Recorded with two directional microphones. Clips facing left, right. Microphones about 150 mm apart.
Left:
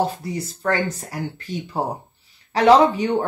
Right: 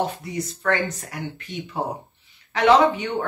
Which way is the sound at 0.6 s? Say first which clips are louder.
Left 2 dB; 35° left (ahead or behind).